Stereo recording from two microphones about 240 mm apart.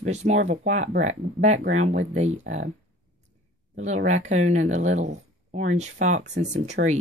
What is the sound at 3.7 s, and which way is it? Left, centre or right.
Speech, right.